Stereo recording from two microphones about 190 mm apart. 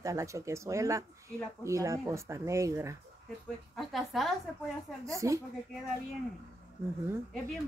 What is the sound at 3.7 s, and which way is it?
Speech, centre (ahead or behind).